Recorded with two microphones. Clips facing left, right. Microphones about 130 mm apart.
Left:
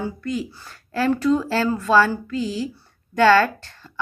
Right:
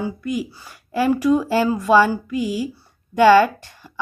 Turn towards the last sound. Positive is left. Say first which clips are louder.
# right 1 dB
turn(degrees=-15)  # may be behind; listen again after turning